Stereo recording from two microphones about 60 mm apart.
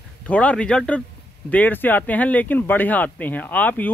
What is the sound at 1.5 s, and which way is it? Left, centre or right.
Speech, left.